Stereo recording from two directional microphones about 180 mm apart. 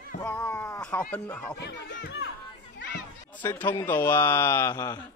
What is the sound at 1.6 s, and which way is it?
Speech, 75° left (ahead or behind).